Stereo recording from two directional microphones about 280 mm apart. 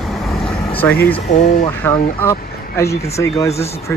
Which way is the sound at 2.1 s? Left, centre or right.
Centre.